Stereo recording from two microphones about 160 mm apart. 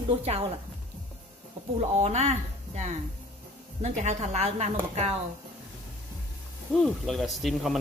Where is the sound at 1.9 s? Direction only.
45° right (ahead or behind).